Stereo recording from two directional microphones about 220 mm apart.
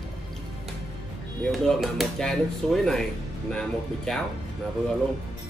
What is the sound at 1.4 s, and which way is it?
Speech, centre (ahead or behind).